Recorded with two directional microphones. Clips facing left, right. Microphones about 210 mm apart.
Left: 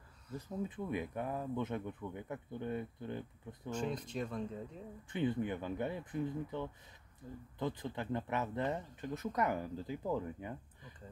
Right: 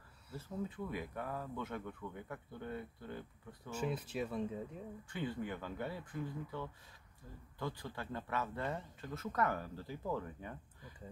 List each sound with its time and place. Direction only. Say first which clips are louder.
0.4 s speech: left 1 dB; 15° left (ahead or behind)
3.7 s speech: even; 5° right (ahead or behind)
5.1 s speech: left 6 dB; 20° left (ahead or behind)